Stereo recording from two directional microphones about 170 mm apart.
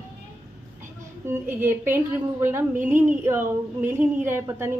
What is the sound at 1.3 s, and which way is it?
A woman's voice, 15° right (ahead or behind).